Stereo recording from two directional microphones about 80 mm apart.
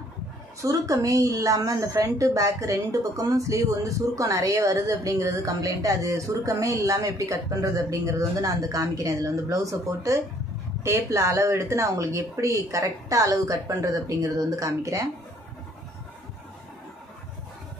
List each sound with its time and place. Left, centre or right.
0.6 s a woman's voice: right